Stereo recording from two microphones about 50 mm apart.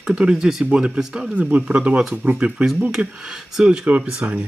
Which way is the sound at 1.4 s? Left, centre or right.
Right.